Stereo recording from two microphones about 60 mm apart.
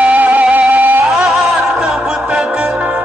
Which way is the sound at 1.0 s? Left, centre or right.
Centre.